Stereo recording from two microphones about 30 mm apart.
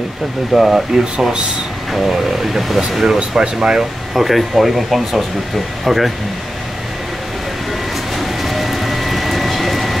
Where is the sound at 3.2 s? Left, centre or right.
Right.